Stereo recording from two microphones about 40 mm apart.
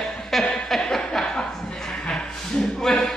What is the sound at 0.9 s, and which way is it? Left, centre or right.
Chuckle, centre.